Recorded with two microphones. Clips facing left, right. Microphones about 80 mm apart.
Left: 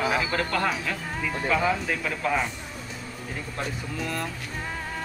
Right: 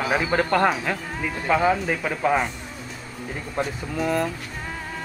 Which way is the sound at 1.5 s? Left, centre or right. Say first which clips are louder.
Right 6 dB; centre.